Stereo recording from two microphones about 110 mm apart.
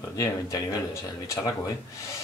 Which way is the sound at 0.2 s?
30° left (ahead or behind).